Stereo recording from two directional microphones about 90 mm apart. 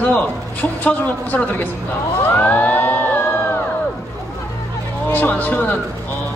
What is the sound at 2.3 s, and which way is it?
Music, 20° left (ahead or behind).